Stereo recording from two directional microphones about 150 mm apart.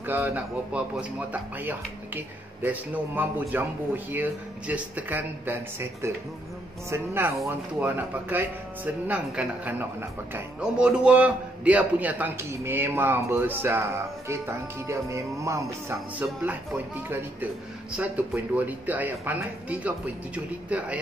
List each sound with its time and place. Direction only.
0.0 s a man's voice: 15° right (ahead or behind)